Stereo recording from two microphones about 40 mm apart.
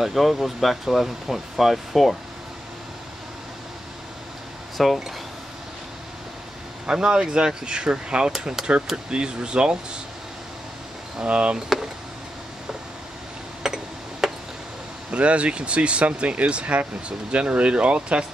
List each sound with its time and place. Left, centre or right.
0.0 s speech: centre
4.7 s speech: centre
6.9 s speech: centre
11.1 s speech: right
13.6 s clock: centre
14.2 s a sound: centre
15.0 s speech: right